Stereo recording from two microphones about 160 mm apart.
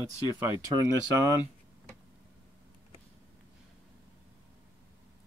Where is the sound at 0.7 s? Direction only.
20° right (ahead or behind).